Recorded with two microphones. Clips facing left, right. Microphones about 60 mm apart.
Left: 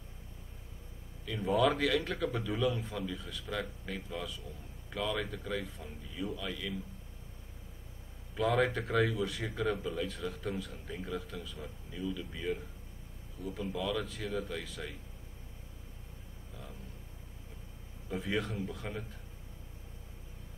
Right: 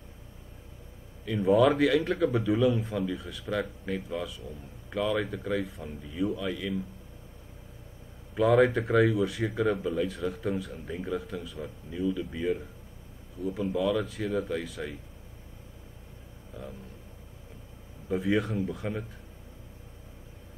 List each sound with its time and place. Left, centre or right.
1.2 s a man's voice: centre
8.4 s a man's voice: centre
18.1 s a man's voice: centre